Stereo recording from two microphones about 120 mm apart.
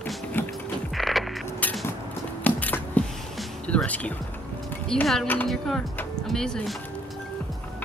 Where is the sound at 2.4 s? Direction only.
15° left (ahead or behind).